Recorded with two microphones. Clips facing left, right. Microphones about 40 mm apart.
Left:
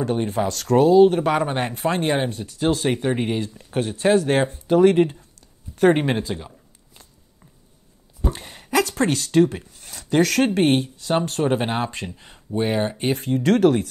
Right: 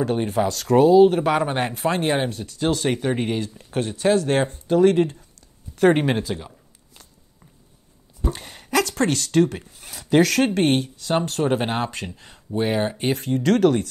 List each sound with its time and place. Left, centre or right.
0.0 s speech: centre
4.0 s speech: left
5.8 s a sound: centre
8.2 s speech: centre